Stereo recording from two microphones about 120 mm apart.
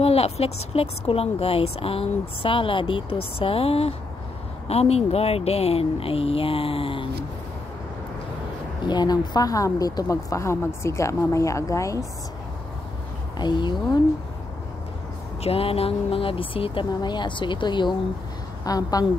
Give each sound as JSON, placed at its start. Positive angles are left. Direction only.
{"t": 0.0, "sound": "a woman's voice", "side_deg": 55}
{"t": 8.8, "sound": "speech", "side_deg": 35}
{"t": 13.4, "sound": "speech", "side_deg": 40}
{"t": 15.4, "sound": "a woman's voice", "side_deg": 55}